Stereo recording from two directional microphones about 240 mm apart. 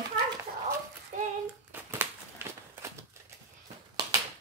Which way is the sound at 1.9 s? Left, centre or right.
Centre.